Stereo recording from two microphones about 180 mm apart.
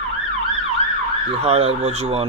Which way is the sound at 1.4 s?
35° right (ahead or behind).